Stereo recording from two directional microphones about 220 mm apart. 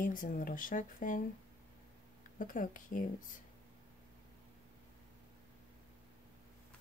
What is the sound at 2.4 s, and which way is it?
Speech, 35° left (ahead or behind).